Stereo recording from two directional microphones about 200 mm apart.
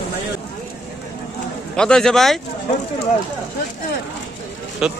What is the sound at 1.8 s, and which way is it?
Speech, 5° left (ahead or behind).